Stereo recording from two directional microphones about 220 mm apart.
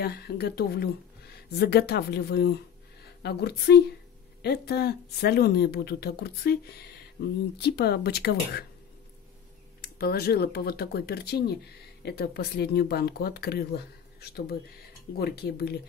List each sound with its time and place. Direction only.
0.0 s speech: 45° left (ahead or behind)
9.8 s speech: 45° left (ahead or behind)